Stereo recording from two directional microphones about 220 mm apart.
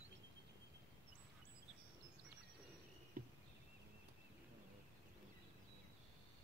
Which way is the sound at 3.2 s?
35° right (ahead or behind).